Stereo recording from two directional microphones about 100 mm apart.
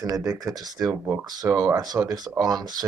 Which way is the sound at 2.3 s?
40° right (ahead or behind).